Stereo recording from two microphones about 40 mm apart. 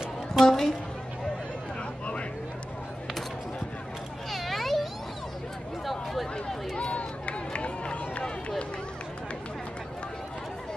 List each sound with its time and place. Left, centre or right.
0.3 s a sound: centre
4.3 s children playing: centre
6.8 s run: left